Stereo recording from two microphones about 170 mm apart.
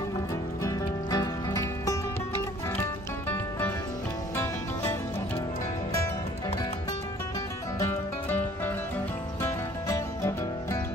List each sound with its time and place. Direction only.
0.6 s music: 20° left (ahead or behind)
3.3 s music: 10° left (ahead or behind)
7.8 s music: 15° left (ahead or behind)